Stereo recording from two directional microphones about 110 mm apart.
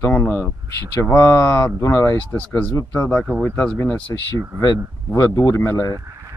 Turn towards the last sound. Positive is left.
turn(degrees=25)  # may be behind; listen again after turning